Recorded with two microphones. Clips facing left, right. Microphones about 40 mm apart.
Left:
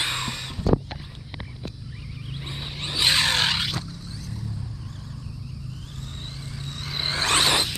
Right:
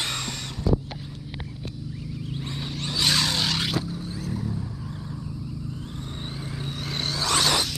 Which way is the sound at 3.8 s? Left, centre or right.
Right.